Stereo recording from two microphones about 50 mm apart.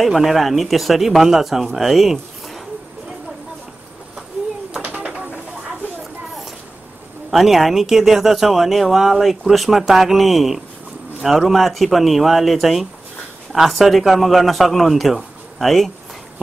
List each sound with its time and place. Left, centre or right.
0.0 s a man's voice: centre
4.9 s a sound: centre
7.2 s a man's voice: centre